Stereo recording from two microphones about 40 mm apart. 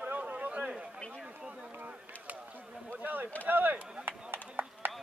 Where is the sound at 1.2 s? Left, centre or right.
Right.